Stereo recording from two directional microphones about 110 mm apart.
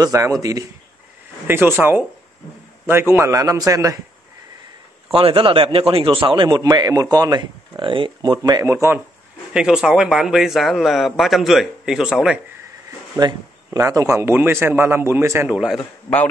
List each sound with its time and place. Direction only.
0.0 s speech: 30° right (ahead or behind)
1.5 s a man's voice: 20° right (ahead or behind)
5.1 s a man's voice: 55° right (ahead or behind); by 8.6 s 35° right (ahead or behind)
8.6 s a man's voice: 25° right (ahead or behind)
9.5 s a man's voice: 5° right (ahead or behind)
13.2 s a man's voice: 35° right (ahead or behind); by 15.7 s 15° right (ahead or behind)